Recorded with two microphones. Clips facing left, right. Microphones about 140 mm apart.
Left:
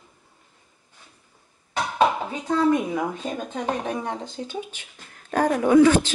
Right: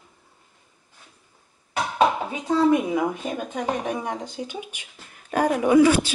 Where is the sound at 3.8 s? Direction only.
10° right (ahead or behind).